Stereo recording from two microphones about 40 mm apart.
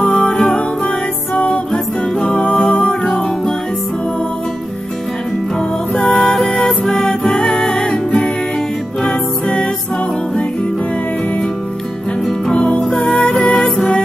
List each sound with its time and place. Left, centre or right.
0.0 s music: left
2.6 s music: left
5.9 s music: left
12.9 s music: centre
13.4 s music: left